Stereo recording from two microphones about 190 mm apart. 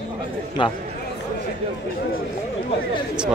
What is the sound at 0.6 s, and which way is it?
Speech, 25° left (ahead or behind).